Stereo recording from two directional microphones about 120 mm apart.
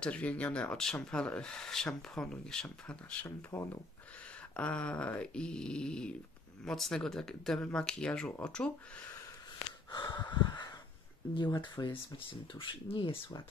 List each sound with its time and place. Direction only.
0.0 s speech: 10° left (ahead or behind)
3.5 s speech: 20° left (ahead or behind)
4.6 s speech: 10° left (ahead or behind)
9.8 s a sound: 40° left (ahead or behind)
11.5 s speech: 35° left (ahead or behind)